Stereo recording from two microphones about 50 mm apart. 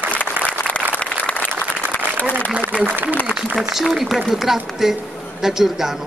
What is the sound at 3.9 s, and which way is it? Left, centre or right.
A man's voice, centre.